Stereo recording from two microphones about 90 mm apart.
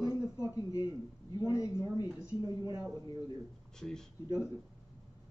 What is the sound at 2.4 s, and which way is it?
Speech, 45° right (ahead or behind).